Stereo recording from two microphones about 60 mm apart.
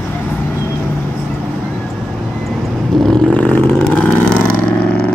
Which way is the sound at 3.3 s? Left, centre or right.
Left.